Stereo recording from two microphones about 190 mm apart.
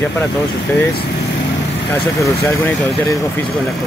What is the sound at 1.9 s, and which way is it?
Speech, 15° left (ahead or behind).